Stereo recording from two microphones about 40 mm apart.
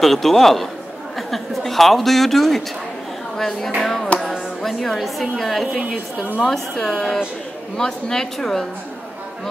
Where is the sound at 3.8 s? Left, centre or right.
Centre.